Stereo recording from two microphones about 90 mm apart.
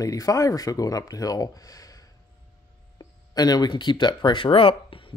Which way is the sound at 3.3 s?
50° left (ahead or behind).